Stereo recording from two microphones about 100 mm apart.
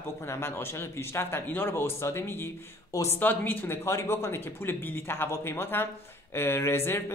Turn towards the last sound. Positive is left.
turn(degrees=25)  # may be behind; listen again after turning